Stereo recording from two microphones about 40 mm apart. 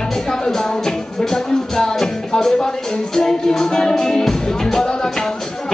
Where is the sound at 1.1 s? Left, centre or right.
Centre.